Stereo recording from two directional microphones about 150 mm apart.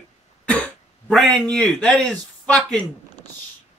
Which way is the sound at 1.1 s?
Centre (ahead or behind).